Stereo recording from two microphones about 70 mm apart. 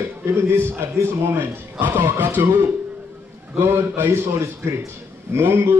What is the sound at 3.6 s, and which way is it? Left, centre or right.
A man's voice, right.